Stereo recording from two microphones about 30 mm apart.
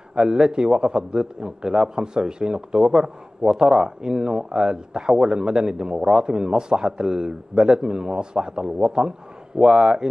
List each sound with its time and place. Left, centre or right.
0.1 s a man's voice: right